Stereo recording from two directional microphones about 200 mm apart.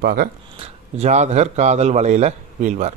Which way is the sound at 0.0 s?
50° right (ahead or behind).